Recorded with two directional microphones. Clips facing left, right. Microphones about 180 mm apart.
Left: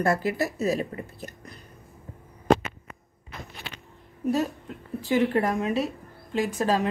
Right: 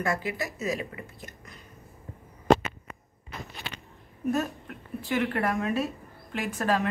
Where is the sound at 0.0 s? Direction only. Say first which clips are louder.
Left 5 dB; 40° left (ahead or behind).